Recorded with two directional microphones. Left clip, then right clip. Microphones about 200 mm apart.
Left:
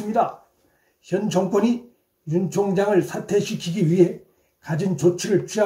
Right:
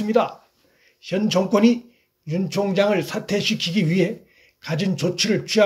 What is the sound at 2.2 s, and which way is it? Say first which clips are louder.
A man's voice: left 1 dB; 30° right (ahead or behind).